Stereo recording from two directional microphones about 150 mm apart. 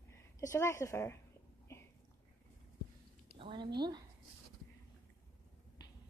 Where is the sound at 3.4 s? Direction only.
35° right (ahead or behind).